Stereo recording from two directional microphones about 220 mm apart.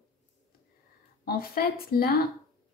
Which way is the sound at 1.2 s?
45° left (ahead or behind).